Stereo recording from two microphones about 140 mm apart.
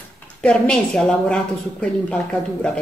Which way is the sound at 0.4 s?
5° left (ahead or behind).